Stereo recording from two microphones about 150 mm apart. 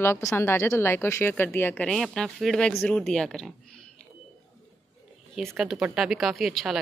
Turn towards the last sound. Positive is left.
turn(degrees=0)  # may be behind; listen again after turning